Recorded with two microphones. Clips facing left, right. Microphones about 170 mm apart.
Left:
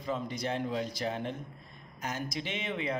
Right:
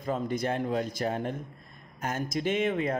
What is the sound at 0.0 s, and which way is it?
Speech, 50° right (ahead or behind).